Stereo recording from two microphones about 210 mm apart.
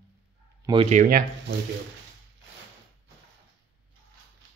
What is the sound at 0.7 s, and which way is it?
Speech, 30° right (ahead or behind).